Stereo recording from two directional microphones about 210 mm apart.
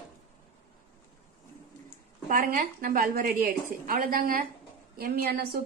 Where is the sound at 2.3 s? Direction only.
40° right (ahead or behind).